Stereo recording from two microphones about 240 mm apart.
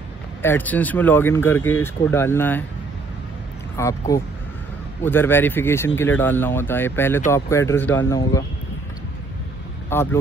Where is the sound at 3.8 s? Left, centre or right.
Centre.